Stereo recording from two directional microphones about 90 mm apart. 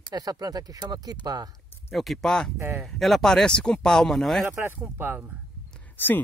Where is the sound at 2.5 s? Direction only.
25° right (ahead or behind).